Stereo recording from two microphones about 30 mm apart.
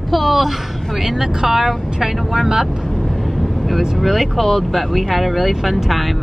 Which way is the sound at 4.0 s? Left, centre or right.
Centre.